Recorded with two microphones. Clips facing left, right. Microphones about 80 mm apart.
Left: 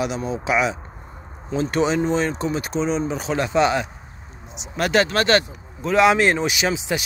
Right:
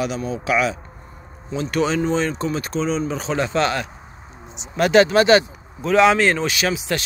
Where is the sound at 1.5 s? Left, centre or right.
Left.